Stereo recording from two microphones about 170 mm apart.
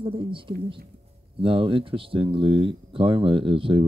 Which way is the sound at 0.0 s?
30° right (ahead or behind).